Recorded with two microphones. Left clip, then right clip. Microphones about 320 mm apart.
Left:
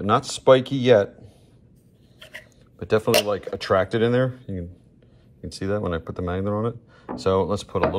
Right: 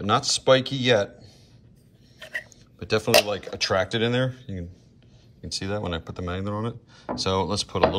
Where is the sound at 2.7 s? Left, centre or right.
Centre.